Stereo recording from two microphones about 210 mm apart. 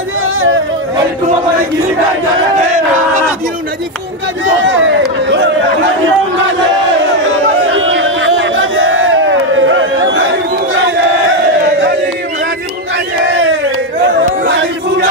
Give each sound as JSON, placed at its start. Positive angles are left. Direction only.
{"t": 4.5, "sound": "speech", "side_deg": -65}
{"t": 7.6, "sound": "crowd", "side_deg": -65}
{"t": 13.2, "sound": "crowd", "side_deg": -60}
{"t": 14.5, "sound": "chant", "side_deg": -60}